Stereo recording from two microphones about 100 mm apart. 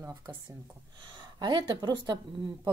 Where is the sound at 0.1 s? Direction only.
45° right (ahead or behind).